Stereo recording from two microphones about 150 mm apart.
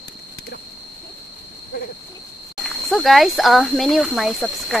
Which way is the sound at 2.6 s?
Centre (ahead or behind).